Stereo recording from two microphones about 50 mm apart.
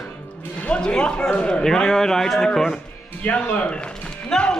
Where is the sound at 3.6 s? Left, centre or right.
Left.